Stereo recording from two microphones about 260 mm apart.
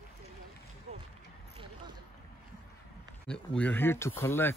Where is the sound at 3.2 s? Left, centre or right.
Centre.